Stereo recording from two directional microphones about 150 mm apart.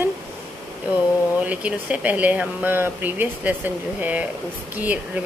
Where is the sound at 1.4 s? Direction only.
10° right (ahead or behind).